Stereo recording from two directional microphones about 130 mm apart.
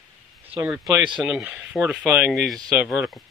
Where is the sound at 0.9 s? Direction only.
35° right (ahead or behind).